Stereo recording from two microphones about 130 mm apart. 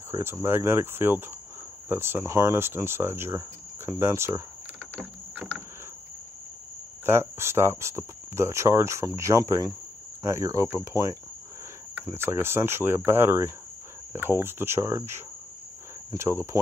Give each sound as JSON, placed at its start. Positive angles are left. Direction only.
{"t": 0.1, "sound": "speech", "side_deg": -20}
{"t": 4.0, "sound": "insect", "side_deg": -20}
{"t": 7.1, "sound": "speech", "side_deg": -20}